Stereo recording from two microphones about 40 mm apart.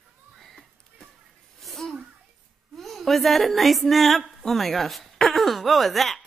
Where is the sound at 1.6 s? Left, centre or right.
Centre.